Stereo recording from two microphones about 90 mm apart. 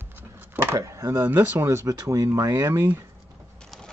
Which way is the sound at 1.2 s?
25° right (ahead or behind).